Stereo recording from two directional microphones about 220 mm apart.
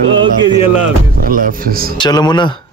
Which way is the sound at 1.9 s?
20° left (ahead or behind).